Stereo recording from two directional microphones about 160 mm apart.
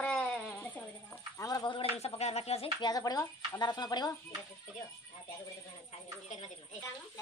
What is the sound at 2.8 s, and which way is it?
Speech, 25° left (ahead or behind).